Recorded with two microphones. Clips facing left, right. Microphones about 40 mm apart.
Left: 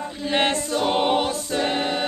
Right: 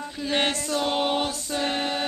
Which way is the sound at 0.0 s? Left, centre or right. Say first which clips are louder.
Left 3 dB; centre.